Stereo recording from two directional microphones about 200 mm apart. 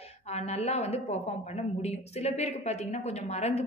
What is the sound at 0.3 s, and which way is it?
A woman's voice, 35° left (ahead or behind).